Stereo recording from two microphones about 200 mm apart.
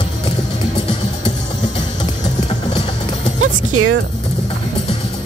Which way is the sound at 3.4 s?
90° right.